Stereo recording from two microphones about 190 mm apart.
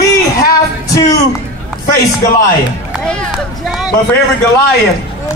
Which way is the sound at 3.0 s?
Centre (ahead or behind).